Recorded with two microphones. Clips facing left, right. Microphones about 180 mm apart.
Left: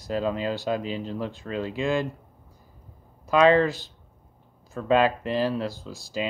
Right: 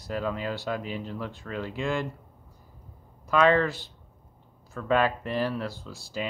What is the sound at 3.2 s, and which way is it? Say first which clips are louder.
Speech: left 3 dB; 20° left (ahead or behind).